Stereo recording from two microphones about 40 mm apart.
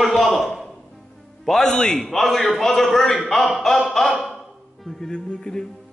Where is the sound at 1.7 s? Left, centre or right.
Centre.